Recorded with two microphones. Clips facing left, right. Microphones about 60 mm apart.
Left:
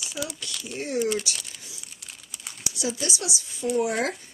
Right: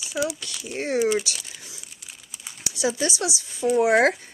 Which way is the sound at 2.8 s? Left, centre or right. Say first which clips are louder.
Right 5 dB; right.